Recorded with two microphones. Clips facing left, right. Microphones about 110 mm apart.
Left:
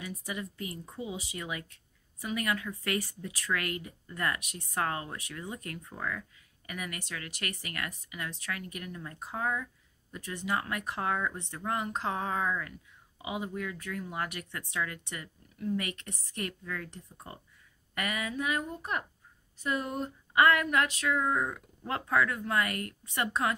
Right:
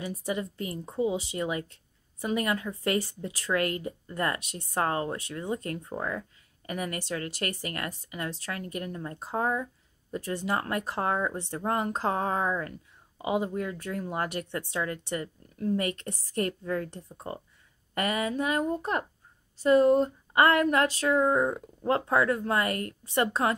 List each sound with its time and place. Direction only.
0.0 s speech: 30° right (ahead or behind)